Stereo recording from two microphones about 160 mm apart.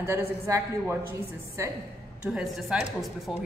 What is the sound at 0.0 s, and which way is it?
A man's voice, 20° right (ahead or behind).